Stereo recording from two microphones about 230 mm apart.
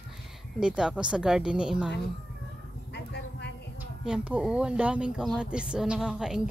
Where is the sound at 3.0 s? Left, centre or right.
Left.